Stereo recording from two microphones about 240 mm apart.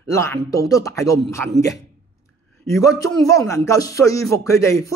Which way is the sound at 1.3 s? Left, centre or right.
Centre.